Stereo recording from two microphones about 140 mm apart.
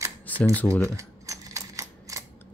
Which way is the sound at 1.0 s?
25° right (ahead or behind).